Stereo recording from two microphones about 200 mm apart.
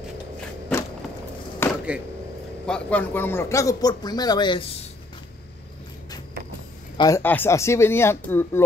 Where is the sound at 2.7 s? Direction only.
5° left (ahead or behind); by 4.6 s 20° left (ahead or behind).